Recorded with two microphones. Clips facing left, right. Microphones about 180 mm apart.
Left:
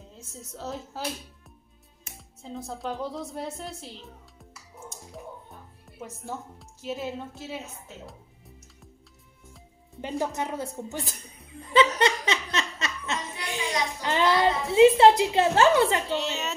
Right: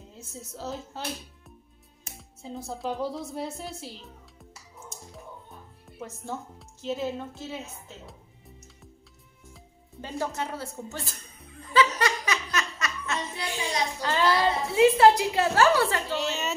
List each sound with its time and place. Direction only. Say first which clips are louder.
0.6 s a woman's voice: left 1 dB; centre (ahead or behind)
2.1 s speech: even; centre (ahead or behind)
5.9 s a woman's voice: right 1 dB; 5° left (ahead or behind)
10.0 s a woman's voice: left 2 dB; 15° left (ahead or behind)
11.7 s laughter: left 3 dB; 25° left (ahead or behind)
16.1 s a woman's voice: even; centre (ahead or behind)